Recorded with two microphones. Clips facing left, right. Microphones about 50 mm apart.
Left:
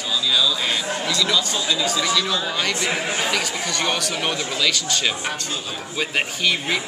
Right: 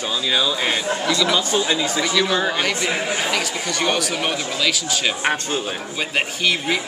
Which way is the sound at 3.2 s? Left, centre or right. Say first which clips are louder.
Right 1 dB; centre.